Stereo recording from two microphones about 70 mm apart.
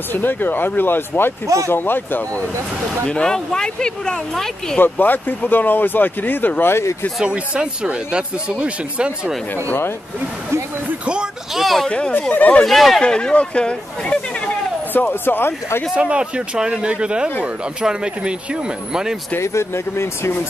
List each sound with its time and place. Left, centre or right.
0.1 s speech: left
3.1 s speech: centre
4.7 s speech: left
7.2 s speech: centre
11.1 s speech: centre
11.6 s speech: centre
12.1 s speech: left
12.6 s speech: centre
13.0 s speech: centre
15.2 s speech: left
15.9 s speech: centre
19.3 s speech: left